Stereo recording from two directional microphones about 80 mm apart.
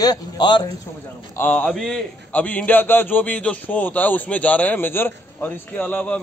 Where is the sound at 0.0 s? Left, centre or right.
Left.